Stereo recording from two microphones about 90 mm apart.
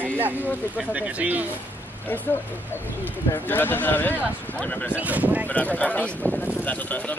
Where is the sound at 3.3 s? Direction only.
20° left (ahead or behind).